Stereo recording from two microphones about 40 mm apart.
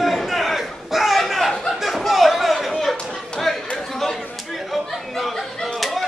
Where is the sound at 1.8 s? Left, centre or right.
Centre.